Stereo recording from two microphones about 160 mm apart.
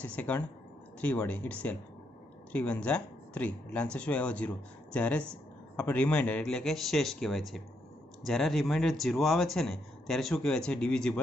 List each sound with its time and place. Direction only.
0.0 s a man's voice: 10° left (ahead or behind)